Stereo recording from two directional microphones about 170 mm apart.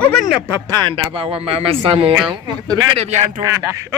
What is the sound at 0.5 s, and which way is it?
A man's voice, 25° right (ahead or behind).